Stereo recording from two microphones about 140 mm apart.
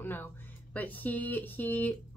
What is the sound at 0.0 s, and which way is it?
A woman's voice, 15° left (ahead or behind).